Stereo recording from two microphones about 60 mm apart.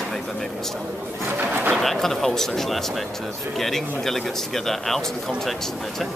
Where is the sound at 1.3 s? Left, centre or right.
Right.